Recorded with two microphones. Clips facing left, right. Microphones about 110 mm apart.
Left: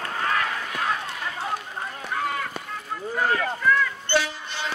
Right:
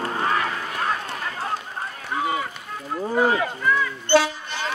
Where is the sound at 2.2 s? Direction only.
5° right (ahead or behind).